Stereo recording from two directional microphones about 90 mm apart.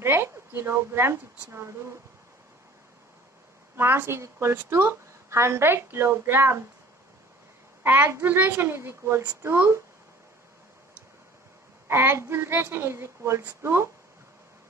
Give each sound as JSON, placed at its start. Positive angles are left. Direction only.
{"t": 0.0, "sound": "a woman's voice", "side_deg": -30}
{"t": 3.7, "sound": "a woman's voice", "side_deg": -25}
{"t": 7.8, "sound": "a woman's voice", "side_deg": -25}
{"t": 11.9, "sound": "a woman's voice", "side_deg": -25}